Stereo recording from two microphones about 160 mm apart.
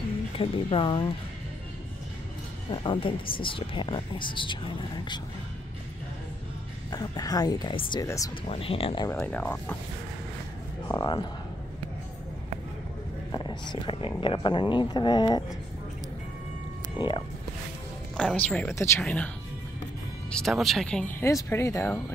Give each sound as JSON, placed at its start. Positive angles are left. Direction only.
{"t": 0.4, "sound": "speech", "side_deg": 35}
{"t": 2.7, "sound": "speech", "side_deg": 30}
{"t": 6.9, "sound": "speech", "side_deg": 25}
{"t": 9.1, "sound": "speech", "side_deg": 10}
{"t": 10.9, "sound": "speech", "side_deg": 25}
{"t": 13.3, "sound": "speech", "side_deg": 25}
{"t": 18.1, "sound": "speech", "side_deg": 5}